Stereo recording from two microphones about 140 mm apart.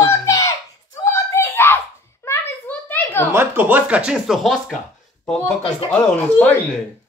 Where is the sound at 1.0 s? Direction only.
20° left (ahead or behind).